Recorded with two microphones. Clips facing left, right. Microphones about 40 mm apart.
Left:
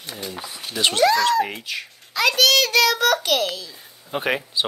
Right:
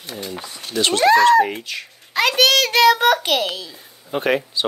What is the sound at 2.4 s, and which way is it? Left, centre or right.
A child's voice, right.